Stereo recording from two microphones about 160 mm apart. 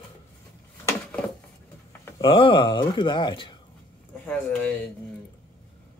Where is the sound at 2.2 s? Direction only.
30° left (ahead or behind).